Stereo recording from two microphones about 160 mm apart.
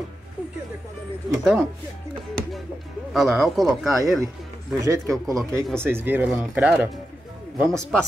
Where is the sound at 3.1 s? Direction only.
Centre (ahead or behind).